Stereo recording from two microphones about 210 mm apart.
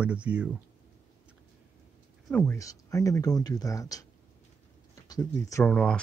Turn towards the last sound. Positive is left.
turn(degrees=5)  # may be behind; listen again after turning